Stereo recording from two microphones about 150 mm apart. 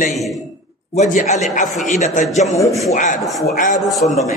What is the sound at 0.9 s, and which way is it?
Speech, 55° left (ahead or behind).